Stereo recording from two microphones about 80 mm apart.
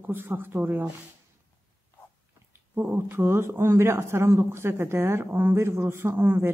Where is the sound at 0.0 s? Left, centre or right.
Right.